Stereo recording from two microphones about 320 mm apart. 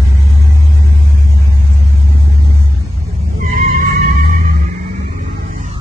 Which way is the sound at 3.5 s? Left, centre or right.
Right.